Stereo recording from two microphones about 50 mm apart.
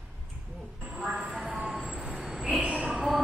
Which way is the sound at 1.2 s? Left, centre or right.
Centre.